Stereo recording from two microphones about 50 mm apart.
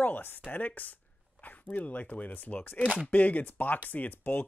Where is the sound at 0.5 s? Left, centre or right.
Left.